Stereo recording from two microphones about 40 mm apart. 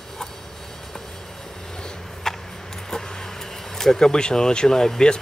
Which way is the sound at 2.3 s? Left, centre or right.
Centre.